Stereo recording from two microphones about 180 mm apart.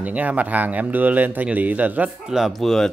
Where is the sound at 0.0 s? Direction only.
10° right (ahead or behind).